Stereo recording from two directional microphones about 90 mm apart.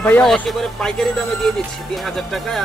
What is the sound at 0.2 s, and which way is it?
Speech, 5° left (ahead or behind).